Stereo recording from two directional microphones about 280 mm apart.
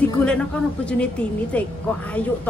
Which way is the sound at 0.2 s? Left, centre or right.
Centre.